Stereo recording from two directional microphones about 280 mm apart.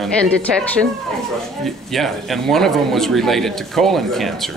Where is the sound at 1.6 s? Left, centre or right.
Centre.